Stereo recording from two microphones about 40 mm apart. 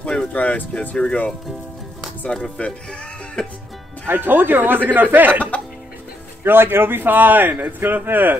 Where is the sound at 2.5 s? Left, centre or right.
Left.